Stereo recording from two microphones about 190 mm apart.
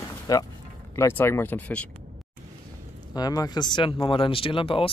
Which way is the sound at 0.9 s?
15° left (ahead or behind).